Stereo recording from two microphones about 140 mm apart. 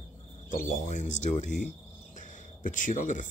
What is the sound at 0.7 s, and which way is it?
Speech, 65° left (ahead or behind).